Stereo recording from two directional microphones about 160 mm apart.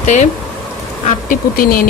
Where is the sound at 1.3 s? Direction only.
65° left (ahead or behind).